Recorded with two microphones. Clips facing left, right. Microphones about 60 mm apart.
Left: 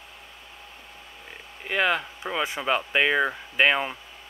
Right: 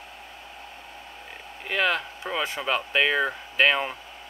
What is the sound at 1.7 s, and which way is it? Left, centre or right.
Speech, centre.